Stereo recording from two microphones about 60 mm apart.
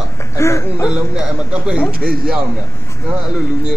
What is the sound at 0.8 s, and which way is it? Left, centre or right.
Speech, centre.